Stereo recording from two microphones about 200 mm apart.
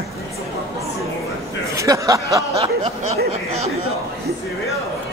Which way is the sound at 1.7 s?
15° right (ahead or behind).